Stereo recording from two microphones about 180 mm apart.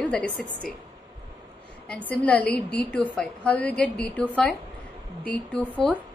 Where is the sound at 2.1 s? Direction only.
5° left (ahead or behind).